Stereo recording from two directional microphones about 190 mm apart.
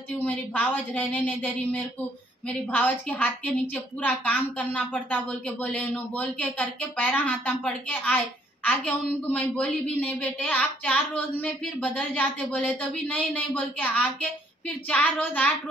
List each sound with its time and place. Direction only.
0.1 s a woman's voice: 10° left (ahead or behind)